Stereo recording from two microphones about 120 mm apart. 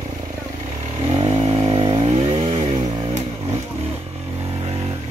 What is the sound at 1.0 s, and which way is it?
Chainsaw, 50° right (ahead or behind).